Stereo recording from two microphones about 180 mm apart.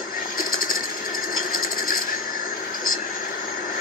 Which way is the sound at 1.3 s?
50° left (ahead or behind).